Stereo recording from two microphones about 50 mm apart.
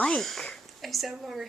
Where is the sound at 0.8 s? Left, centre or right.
Centre.